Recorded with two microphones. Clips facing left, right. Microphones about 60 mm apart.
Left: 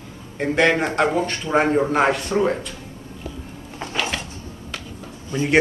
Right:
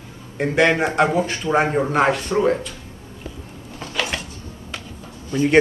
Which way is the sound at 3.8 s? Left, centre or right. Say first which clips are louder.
Left 3 dB; left.